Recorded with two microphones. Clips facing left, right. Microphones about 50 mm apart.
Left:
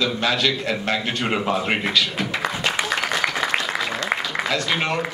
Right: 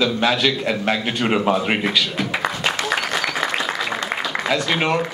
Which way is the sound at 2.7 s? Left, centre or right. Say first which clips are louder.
Even; centre.